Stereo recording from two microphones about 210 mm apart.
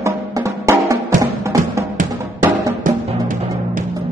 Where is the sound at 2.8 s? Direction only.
40° right (ahead or behind).